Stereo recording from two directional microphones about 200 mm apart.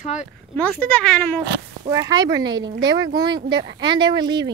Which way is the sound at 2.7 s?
50° right (ahead or behind).